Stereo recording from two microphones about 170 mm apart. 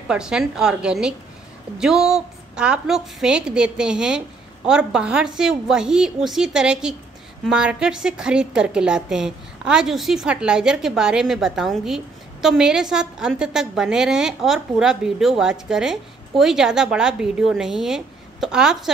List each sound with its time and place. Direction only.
0.1 s a woman's voice: 5° right (ahead or behind)